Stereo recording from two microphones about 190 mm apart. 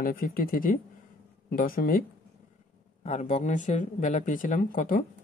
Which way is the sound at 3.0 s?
40° left (ahead or behind).